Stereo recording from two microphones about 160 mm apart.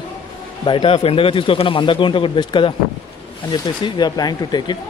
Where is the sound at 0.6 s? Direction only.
30° left (ahead or behind).